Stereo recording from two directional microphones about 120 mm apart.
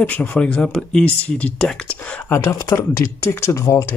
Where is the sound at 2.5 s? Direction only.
25° left (ahead or behind).